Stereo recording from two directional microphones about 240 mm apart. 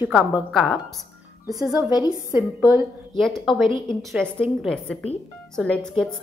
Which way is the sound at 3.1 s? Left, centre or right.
Centre.